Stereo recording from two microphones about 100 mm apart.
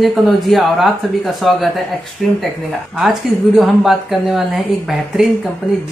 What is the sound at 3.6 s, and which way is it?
Speech, centre (ahead or behind).